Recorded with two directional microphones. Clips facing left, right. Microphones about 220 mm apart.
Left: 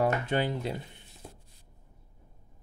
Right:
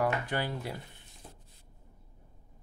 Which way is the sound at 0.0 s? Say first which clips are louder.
Left 4 dB; 20° left (ahead or behind).